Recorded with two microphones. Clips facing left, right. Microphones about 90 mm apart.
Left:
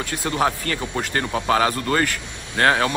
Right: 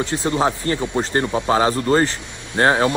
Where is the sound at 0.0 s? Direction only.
25° right (ahead or behind).